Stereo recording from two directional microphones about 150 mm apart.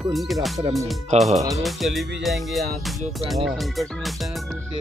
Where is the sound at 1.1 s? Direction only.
45° right (ahead or behind).